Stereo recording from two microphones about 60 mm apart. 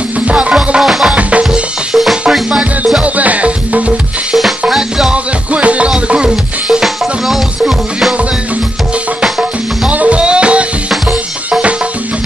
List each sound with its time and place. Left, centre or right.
0.3 s music: right
0.7 s music: centre
1.1 s music: centre
3.0 s music: right
4.4 s music: centre
5.1 s music: right
9.8 s music: right